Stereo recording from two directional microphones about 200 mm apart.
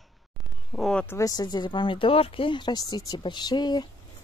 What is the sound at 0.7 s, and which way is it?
Speech, 5° left (ahead or behind).